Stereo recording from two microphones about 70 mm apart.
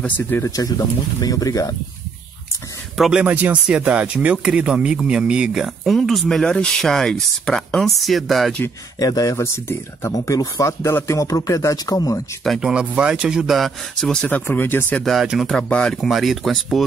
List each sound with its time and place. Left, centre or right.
0.2 s speech: left
0.5 s speech: left
3.3 s speech: right
5.9 s speech: centre
9.0 s speech: left
10.1 s speech: left
12.5 s speech: centre
14.2 s speech: left
15.7 s speech: centre